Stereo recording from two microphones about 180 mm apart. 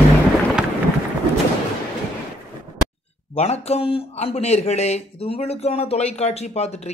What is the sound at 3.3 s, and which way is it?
Speech, 35° left (ahead or behind).